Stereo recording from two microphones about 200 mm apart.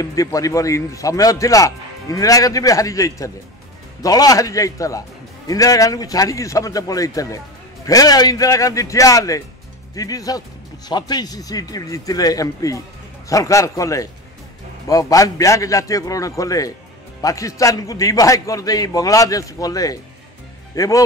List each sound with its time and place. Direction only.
0.0 s a man's voice: 15° left (ahead or behind)